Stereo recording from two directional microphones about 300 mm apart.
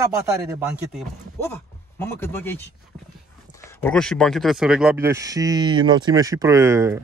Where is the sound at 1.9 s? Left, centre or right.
Centre.